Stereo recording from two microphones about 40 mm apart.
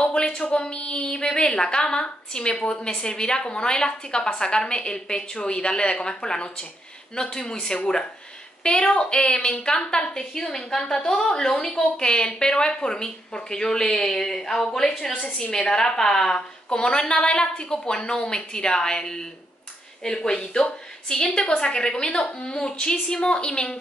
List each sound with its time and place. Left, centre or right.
0.0 s a woman's voice: left
8.6 s a woman's voice: left